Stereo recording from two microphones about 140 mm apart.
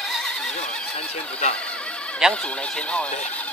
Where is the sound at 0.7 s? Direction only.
5° left (ahead or behind).